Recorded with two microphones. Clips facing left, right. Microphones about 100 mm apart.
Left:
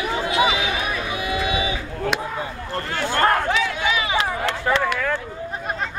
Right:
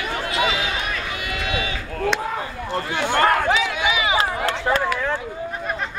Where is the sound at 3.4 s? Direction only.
85° right.